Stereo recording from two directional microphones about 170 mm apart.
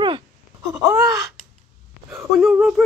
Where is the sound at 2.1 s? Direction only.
Centre (ahead or behind).